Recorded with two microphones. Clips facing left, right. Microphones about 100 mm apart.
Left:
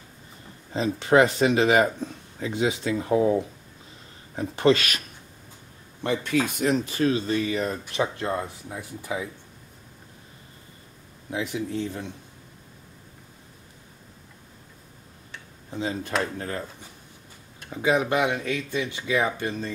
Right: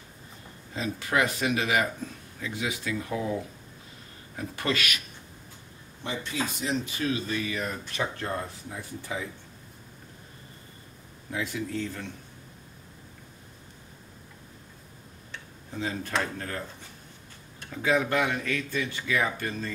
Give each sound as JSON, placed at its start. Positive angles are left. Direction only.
{"t": 0.7, "sound": "speech", "side_deg": 30}
{"t": 4.4, "sound": "speech", "side_deg": 30}
{"t": 6.0, "sound": "speech", "side_deg": 60}
{"t": 7.0, "sound": "speech", "side_deg": 35}
{"t": 11.2, "sound": "speech", "side_deg": 20}
{"t": 15.7, "sound": "speech", "side_deg": 20}
{"t": 17.6, "sound": "speech", "side_deg": 20}